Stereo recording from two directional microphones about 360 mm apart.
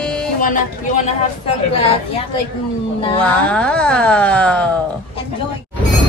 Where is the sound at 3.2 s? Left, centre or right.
Centre.